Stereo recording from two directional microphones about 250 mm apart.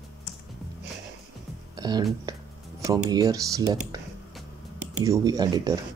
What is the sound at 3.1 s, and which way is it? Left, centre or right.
Speech, centre.